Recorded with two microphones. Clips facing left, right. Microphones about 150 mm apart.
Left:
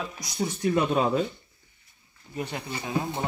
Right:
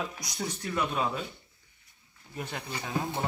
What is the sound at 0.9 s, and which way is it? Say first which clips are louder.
Speech: left 7 dB; 40° left (ahead or behind).